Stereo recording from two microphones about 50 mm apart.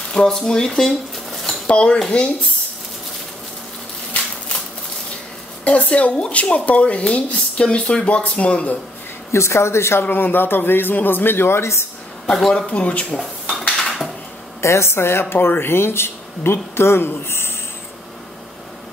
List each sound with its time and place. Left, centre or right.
0.1 s speech: centre
1.7 s speech: left
5.6 s speech: left
9.3 s speech: left
10.0 s a man's voice: left
12.3 s speech: centre
12.6 s speech: left
13.1 s dishes: centre
14.6 s speech: left